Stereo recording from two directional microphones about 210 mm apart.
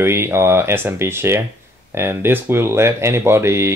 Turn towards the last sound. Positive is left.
turn(degrees=-10)  # may be behind; listen again after turning